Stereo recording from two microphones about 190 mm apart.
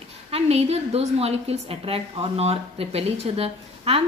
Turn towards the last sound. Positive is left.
turn(degrees=-30)  # may be behind; listen again after turning